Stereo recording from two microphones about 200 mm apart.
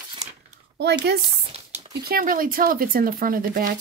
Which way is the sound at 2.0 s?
45° right (ahead or behind).